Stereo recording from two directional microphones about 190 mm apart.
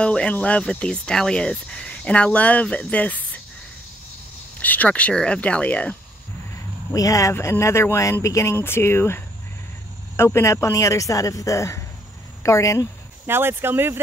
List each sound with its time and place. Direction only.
0.0 s speech: 5° left (ahead or behind)
4.6 s speech: 10° left (ahead or behind)
6.9 s speech: 15° left (ahead or behind)
13.3 s speech: 10° right (ahead or behind)